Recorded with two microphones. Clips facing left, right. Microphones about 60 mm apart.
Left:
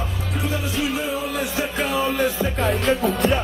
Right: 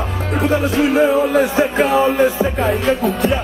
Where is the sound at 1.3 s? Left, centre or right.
Right.